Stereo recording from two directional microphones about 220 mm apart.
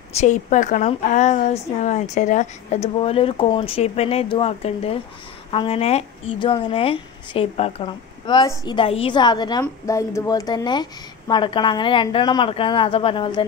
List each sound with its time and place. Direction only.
0.1 s a woman's voice: 30° left (ahead or behind)